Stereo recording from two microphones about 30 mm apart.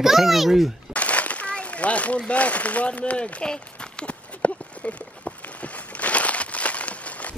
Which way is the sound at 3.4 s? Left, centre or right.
Left.